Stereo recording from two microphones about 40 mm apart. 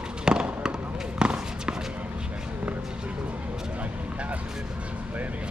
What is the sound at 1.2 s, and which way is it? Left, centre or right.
Basketball bounce, right.